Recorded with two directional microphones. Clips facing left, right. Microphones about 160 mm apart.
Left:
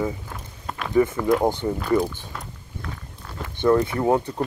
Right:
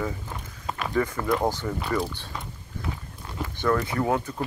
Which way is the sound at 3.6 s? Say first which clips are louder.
Left 5 dB; 25° left (ahead or behind).